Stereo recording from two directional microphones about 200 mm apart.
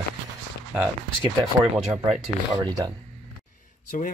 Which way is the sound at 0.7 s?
5° right (ahead or behind).